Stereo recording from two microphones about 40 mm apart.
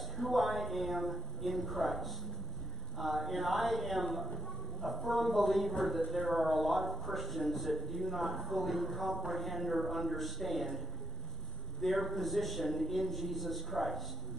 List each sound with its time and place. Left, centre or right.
0.0 s a man's voice: centre
11.8 s a man's voice: centre